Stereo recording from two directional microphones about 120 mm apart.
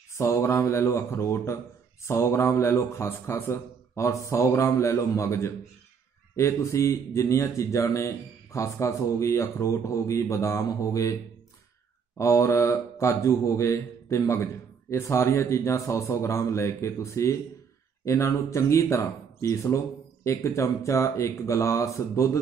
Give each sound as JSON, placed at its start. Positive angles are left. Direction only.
{"t": 0.1, "sound": "speech", "side_deg": 20}
{"t": 12.2, "sound": "speech", "side_deg": 25}